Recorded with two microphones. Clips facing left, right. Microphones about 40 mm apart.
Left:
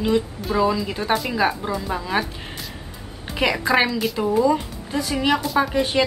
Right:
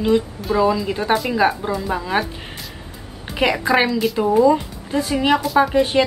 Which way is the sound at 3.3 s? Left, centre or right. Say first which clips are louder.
Right 2 dB; centre.